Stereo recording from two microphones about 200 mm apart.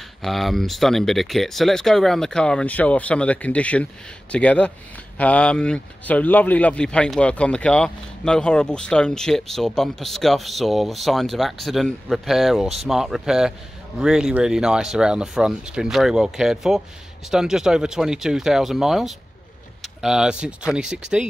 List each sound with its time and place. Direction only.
0.2 s speech: centre (ahead or behind)